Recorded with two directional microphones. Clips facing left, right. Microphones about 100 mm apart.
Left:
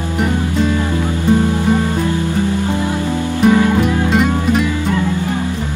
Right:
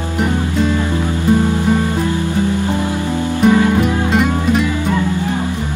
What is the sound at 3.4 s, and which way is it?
Music, centre (ahead or behind).